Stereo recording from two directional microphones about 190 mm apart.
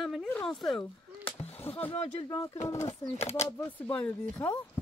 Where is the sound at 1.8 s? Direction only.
35° left (ahead or behind).